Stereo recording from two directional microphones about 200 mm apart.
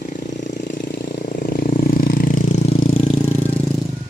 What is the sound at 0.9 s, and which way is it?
Vehicle, 50° left (ahead or behind).